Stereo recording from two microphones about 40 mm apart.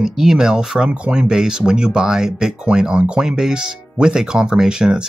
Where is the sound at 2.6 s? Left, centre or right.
Right.